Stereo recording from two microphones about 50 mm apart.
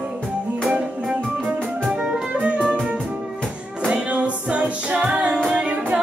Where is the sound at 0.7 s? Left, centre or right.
Centre.